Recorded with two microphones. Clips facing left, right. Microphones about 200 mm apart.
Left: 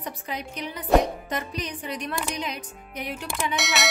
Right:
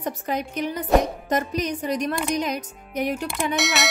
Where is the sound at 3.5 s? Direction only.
Centre (ahead or behind).